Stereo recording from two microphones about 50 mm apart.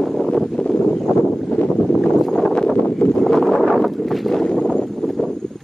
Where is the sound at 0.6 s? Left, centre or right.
Centre.